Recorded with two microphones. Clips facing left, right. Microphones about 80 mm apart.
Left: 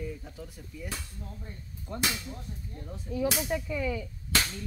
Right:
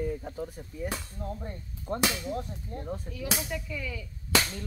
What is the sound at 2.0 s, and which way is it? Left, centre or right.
Speech, right.